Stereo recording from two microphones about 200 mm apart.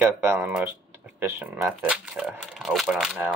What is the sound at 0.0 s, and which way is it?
Speech, 10° right (ahead or behind).